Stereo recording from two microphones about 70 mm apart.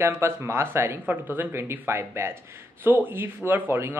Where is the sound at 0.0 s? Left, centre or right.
Right.